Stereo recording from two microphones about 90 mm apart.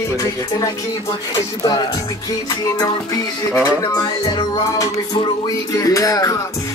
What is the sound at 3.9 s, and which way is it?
Music, 45° left (ahead or behind).